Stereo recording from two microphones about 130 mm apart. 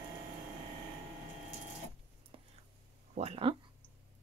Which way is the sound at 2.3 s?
40° right (ahead or behind).